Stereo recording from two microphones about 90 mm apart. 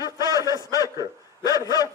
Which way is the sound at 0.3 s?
40° left (ahead or behind).